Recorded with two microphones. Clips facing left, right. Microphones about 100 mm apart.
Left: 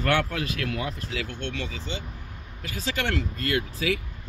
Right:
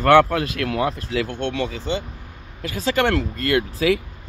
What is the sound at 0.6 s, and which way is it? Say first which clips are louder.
Speech: right 8 dB; 80° right.